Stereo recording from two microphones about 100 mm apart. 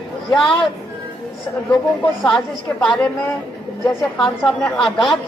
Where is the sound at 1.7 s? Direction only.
5° left (ahead or behind).